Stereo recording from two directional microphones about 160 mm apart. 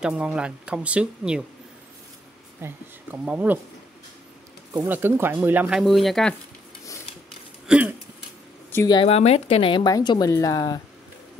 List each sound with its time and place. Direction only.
0.0 s speech: 5° right (ahead or behind)
2.6 s speech: 10° right (ahead or behind)
4.7 s speech: 15° right (ahead or behind)
7.6 s a sound: 5° right (ahead or behind)
8.7 s speech: 25° left (ahead or behind)
9.0 s a woman's voice: 40° left (ahead or behind); by 10.8 s 25° left (ahead or behind)